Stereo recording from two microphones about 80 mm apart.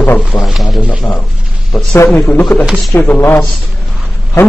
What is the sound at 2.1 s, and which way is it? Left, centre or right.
A man's voice, left.